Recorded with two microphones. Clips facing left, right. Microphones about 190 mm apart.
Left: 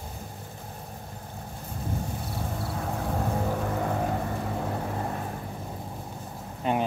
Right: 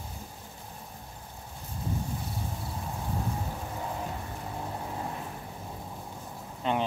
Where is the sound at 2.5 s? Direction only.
75° left (ahead or behind).